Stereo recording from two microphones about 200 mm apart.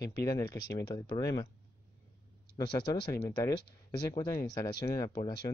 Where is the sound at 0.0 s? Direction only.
15° left (ahead or behind).